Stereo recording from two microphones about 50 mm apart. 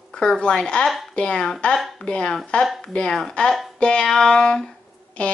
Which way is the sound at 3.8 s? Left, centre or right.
Centre.